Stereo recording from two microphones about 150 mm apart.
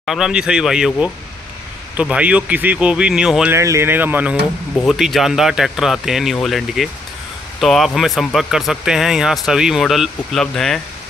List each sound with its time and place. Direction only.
0.0 s speech: centre (ahead or behind)
3.5 s speech: 20° right (ahead or behind); by 10.8 s 5° left (ahead or behind)